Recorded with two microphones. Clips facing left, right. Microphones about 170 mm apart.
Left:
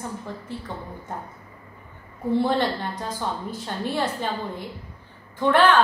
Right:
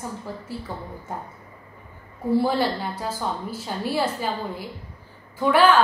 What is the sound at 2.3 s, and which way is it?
A woman's voice, 5° right (ahead or behind).